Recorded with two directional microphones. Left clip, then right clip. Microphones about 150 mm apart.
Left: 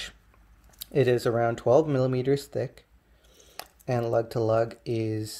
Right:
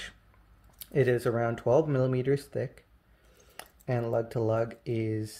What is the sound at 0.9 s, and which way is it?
Speech, 20° left (ahead or behind).